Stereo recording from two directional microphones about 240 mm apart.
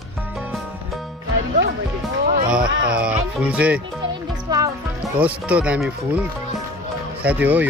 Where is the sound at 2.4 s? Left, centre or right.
Centre.